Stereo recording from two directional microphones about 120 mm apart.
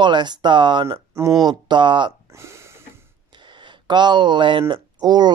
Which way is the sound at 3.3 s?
40° right (ahead or behind).